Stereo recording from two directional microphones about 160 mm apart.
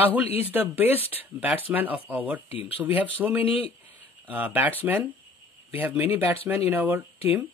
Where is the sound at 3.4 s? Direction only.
35° left (ahead or behind).